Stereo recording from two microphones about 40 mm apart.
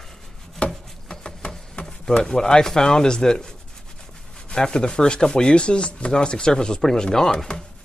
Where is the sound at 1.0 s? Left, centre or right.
Centre.